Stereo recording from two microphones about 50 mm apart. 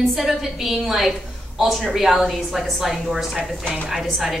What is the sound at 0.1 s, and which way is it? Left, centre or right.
A woman's voice, centre.